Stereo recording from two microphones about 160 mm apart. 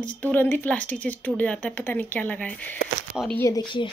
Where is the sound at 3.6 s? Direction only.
30° left (ahead or behind).